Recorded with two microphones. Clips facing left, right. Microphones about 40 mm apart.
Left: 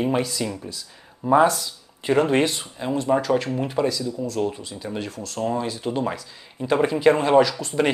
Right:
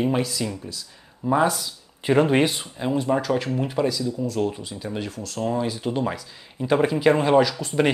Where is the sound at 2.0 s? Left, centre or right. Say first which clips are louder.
Right 1 dB; centre.